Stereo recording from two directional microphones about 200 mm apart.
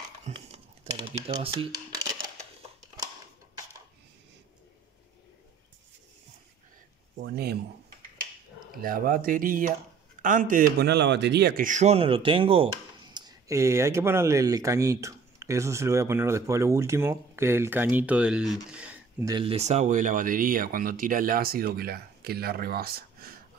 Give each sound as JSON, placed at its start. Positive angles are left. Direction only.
{"t": 0.3, "sound": "speech", "side_deg": -35}
{"t": 7.2, "sound": "speech", "side_deg": -55}
{"t": 8.7, "sound": "a man's voice", "side_deg": -45}
{"t": 18.7, "sound": "a sound", "side_deg": -5}
{"t": 19.2, "sound": "speech", "side_deg": -25}